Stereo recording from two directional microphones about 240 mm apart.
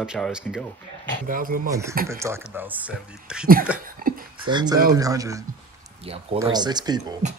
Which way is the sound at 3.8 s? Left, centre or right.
Right.